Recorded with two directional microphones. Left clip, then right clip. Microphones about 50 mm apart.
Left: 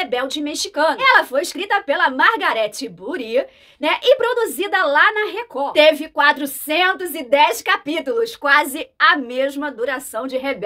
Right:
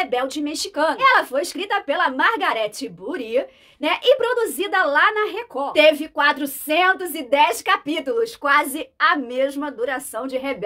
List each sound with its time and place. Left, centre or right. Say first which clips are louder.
0.0 s speech: left 1 dB; left